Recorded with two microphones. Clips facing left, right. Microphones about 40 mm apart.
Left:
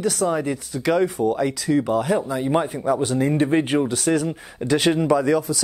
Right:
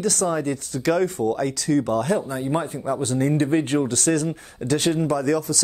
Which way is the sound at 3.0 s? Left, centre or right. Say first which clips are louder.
Left 1 dB; centre.